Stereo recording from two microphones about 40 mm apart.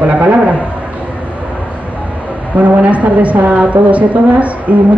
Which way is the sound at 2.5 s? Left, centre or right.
Right.